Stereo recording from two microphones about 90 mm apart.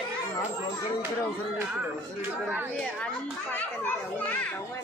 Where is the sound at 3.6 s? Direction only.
20° left (ahead or behind).